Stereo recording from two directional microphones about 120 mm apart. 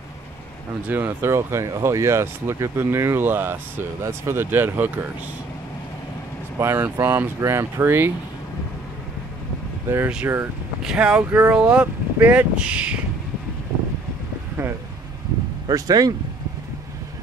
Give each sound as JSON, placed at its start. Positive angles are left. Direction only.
{"t": 0.8, "sound": "speech", "side_deg": -15}
{"t": 6.6, "sound": "speech", "side_deg": -20}
{"t": 9.8, "sound": "speech", "side_deg": -20}
{"t": 10.8, "sound": "speech", "side_deg": -5}
{"t": 15.6, "sound": "speech", "side_deg": -35}